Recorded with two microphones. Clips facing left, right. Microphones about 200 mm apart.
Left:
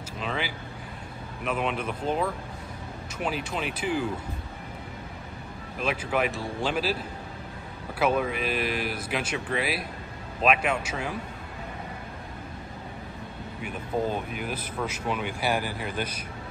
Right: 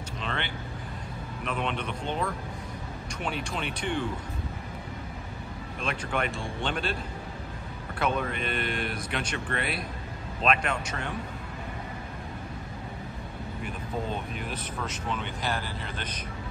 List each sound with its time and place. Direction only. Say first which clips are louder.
0.2 s a man's voice: left 3 dB; 5° left (ahead or behind)
5.8 s a man's voice: left 4 dB; 5° left (ahead or behind)
8.0 s a man's voice: left 4 dB; 5° left (ahead or behind)
13.6 s speech: left 5 dB; 5° left (ahead or behind)